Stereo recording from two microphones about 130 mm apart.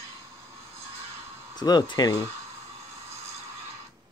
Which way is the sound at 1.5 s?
35° left (ahead or behind).